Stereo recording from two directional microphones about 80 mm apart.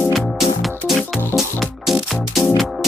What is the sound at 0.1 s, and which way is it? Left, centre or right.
Music, centre.